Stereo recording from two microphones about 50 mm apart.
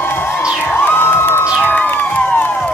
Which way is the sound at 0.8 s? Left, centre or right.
Left.